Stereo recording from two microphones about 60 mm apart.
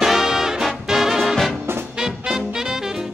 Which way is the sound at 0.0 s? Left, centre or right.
Centre.